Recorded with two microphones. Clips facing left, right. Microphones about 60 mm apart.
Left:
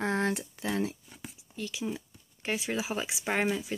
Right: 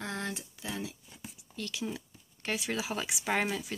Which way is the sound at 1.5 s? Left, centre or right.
Centre.